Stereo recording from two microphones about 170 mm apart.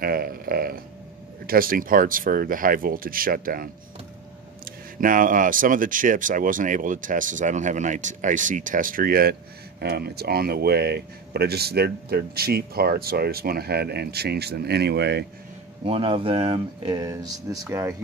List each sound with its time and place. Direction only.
0.0 s speech: 60° right (ahead or behind)
5.0 s speech: 50° right (ahead or behind); by 15.2 s 80° right
15.8 s speech: 35° right (ahead or behind); by 17.9 s 20° right (ahead or behind)